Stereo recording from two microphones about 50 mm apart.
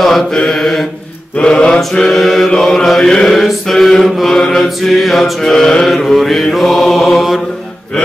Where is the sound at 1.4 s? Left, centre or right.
Centre.